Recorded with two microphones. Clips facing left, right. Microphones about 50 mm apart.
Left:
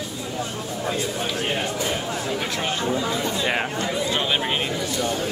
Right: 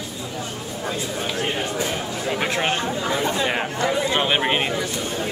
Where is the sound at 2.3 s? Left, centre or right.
Right.